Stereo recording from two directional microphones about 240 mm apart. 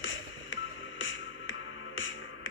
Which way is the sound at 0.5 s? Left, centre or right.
Left.